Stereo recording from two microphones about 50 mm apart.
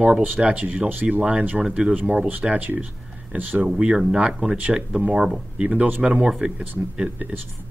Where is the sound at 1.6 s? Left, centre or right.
Centre.